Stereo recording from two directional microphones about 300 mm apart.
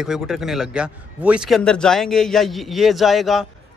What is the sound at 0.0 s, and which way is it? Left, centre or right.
A man's voice, centre.